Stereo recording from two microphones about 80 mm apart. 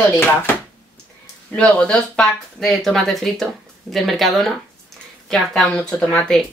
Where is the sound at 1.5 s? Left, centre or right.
Centre.